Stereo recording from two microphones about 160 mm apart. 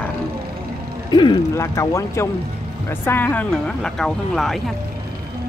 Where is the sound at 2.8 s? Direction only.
15° left (ahead or behind).